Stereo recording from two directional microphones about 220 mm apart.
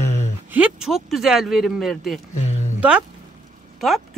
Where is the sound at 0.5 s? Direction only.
5° right (ahead or behind).